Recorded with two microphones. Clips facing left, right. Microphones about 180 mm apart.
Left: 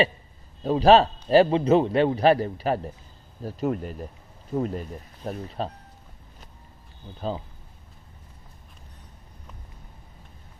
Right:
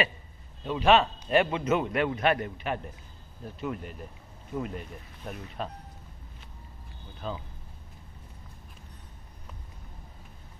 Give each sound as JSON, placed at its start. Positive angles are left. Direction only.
{"t": 0.7, "sound": "a man's voice", "side_deg": 35}
{"t": 7.2, "sound": "a man's voice", "side_deg": 35}